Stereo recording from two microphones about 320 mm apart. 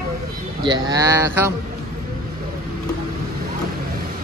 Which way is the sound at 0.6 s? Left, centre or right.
Centre.